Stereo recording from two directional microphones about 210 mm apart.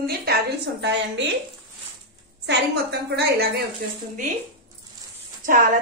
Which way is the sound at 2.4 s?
50° right (ahead or behind).